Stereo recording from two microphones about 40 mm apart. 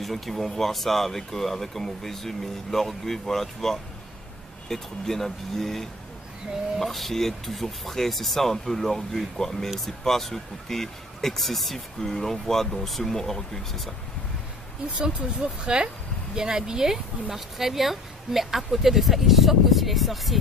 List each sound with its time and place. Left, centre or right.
0.0 s speech: centre
15.1 s speech: right; by 20.3 s centre